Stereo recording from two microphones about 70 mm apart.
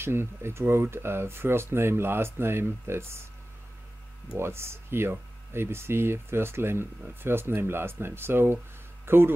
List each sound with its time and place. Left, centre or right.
0.0 s speech: right
4.4 s speech: right